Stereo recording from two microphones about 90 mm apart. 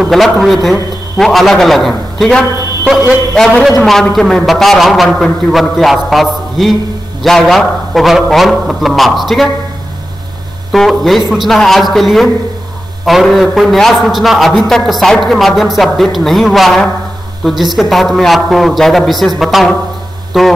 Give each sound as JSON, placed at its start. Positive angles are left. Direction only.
{"t": 0.0, "sound": "a man's voice", "side_deg": 0}
{"t": 10.7, "sound": "a man's voice", "side_deg": 0}